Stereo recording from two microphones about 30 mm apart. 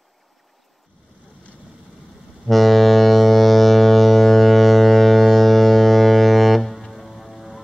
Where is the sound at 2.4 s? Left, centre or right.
Centre.